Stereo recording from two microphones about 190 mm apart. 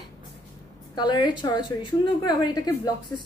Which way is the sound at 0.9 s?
25° left (ahead or behind).